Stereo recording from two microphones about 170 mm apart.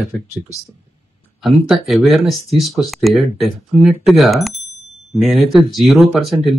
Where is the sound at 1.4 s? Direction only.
Centre (ahead or behind).